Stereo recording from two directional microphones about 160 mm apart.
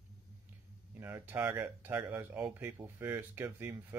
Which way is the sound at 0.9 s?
15° right (ahead or behind).